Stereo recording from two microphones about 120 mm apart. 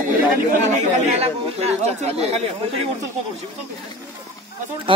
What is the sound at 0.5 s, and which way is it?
Speech, 80° right.